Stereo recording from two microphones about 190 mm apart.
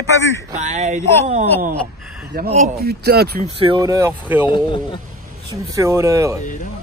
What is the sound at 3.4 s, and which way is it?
Speech, 30° right (ahead or behind).